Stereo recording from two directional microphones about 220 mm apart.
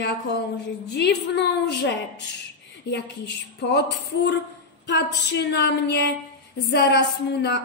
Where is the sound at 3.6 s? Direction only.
50° left (ahead or behind).